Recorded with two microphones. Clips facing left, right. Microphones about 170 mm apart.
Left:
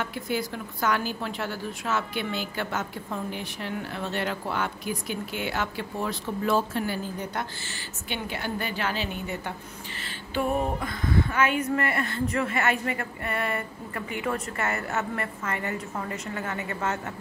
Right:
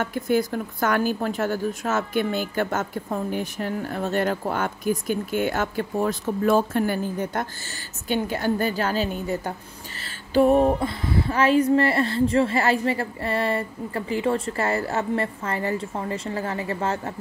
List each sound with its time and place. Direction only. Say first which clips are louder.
0.0 s a woman's voice: right 7 dB; 45° right (ahead or behind); by 17.1 s 30° right (ahead or behind)